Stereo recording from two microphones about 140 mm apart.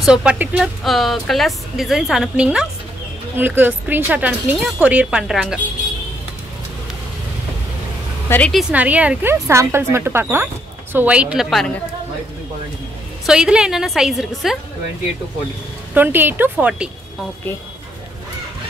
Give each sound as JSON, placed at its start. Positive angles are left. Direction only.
{"t": 0.0, "sound": "a woman's voice", "side_deg": -5}
{"t": 0.8, "sound": "a woman's voice", "side_deg": 0}
{"t": 8.3, "sound": "a woman's voice", "side_deg": 15}
{"t": 8.7, "sound": "speech", "side_deg": -10}
{"t": 13.3, "sound": "a woman's voice", "side_deg": -5}
{"t": 15.9, "sound": "speech", "side_deg": -15}